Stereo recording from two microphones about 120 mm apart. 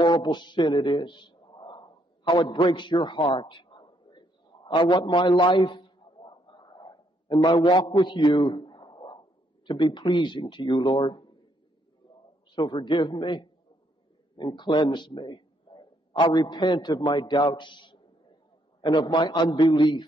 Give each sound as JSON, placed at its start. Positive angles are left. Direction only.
{"t": 0.0, "sound": "a man's voice", "side_deg": 40}
{"t": 6.2, "sound": "a sound", "side_deg": 40}
{"t": 9.7, "sound": "speech", "side_deg": 40}
{"t": 12.4, "sound": "a man's voice", "side_deg": 40}